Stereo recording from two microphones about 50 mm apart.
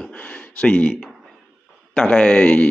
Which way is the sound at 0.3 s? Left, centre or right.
Left.